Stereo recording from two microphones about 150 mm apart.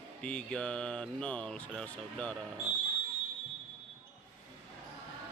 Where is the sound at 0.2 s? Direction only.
5° left (ahead or behind).